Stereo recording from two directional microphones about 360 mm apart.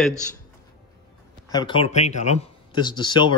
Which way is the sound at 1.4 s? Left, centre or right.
Centre.